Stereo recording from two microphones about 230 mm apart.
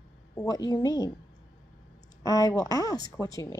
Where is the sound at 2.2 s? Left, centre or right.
Centre.